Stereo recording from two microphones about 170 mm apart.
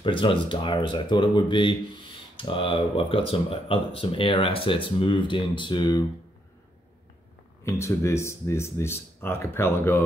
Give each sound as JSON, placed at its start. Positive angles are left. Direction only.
{"t": 0.0, "sound": "speech", "side_deg": 30}
{"t": 7.6, "sound": "speech", "side_deg": 15}